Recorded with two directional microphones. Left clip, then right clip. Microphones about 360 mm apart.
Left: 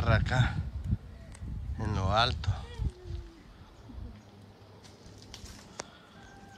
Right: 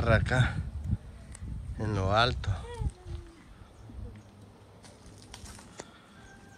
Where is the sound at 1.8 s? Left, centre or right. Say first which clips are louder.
Right 2 dB; centre.